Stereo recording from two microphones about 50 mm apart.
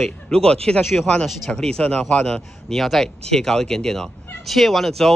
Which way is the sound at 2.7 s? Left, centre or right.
Centre.